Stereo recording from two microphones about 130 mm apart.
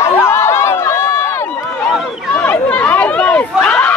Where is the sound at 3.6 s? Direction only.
10° left (ahead or behind).